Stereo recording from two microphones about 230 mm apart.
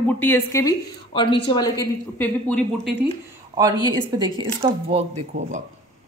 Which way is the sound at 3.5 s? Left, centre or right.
Centre.